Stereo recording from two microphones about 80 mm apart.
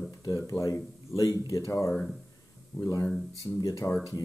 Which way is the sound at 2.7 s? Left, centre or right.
Centre.